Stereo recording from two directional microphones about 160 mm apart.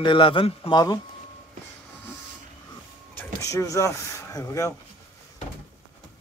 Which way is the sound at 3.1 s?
20° left (ahead or behind).